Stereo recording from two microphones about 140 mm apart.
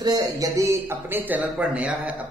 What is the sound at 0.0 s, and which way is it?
Speech, 25° right (ahead or behind).